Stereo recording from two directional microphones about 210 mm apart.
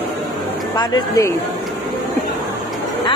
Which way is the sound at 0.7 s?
20° left (ahead or behind).